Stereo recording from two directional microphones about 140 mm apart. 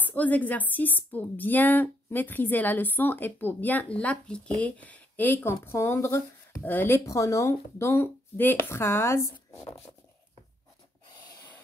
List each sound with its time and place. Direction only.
0.0 s a woman's voice: 10° left (ahead or behind)